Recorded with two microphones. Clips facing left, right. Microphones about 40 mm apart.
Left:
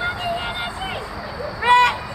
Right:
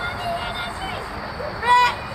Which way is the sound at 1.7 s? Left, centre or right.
Left.